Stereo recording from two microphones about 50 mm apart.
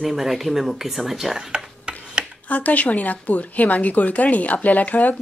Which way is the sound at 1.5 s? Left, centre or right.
Centre.